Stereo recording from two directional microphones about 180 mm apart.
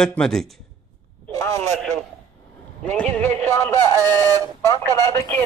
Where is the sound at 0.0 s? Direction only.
5° left (ahead or behind).